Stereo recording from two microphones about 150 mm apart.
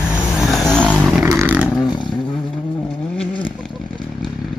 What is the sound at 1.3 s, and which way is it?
Vehicle, 20° right (ahead or behind).